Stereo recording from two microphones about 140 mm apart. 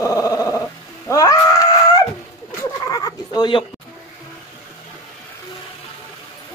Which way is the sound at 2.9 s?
30° left (ahead or behind).